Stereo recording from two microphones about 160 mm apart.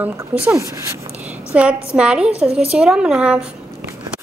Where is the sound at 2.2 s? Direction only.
40° right (ahead or behind).